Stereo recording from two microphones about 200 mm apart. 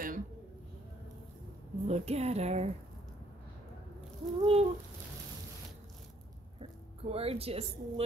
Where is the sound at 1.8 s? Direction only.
30° right (ahead or behind).